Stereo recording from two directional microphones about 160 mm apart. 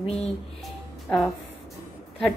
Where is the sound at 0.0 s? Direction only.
40° left (ahead or behind).